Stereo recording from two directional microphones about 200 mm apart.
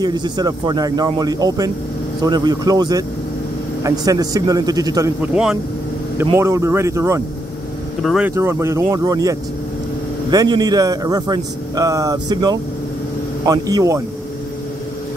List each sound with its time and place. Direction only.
0.0 s a man's voice: 20° right (ahead or behind)
5.2 s speech: 5° right (ahead or behind)
6.3 s speech: 15° right (ahead or behind)
8.0 s speech: centre (ahead or behind)
8.4 s a man's voice: 15° right (ahead or behind)